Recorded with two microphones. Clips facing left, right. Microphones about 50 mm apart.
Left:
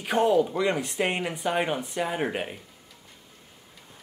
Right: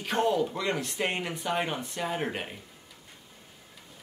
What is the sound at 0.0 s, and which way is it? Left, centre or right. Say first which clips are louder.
Speech: left 4 dB; centre.